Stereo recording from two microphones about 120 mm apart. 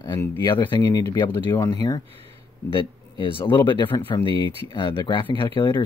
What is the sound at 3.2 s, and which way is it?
Speech, 40° left (ahead or behind).